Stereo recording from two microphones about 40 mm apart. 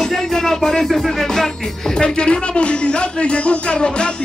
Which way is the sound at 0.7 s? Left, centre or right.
Centre.